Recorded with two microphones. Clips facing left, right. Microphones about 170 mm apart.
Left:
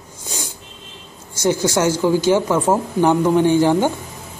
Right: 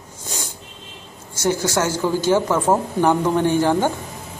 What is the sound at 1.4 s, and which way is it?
Speech, 20° left (ahead or behind).